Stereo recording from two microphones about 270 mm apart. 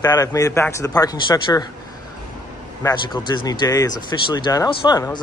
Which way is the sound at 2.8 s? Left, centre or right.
Centre.